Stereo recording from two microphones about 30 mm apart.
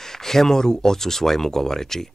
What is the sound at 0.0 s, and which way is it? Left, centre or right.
Speech, centre.